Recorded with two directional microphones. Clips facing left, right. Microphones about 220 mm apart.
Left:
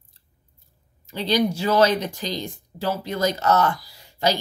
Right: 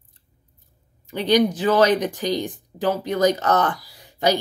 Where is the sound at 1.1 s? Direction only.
15° right (ahead or behind).